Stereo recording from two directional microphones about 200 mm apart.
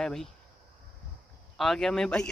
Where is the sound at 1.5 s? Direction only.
Centre (ahead or behind).